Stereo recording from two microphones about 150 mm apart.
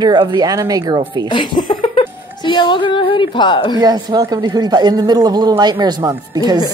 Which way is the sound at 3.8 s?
25° right (ahead or behind).